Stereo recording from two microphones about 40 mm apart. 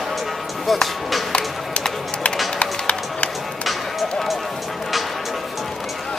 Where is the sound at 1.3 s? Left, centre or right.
Left.